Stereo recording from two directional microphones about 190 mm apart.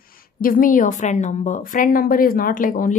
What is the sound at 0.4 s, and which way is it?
A woman's voice, 45° left (ahead or behind).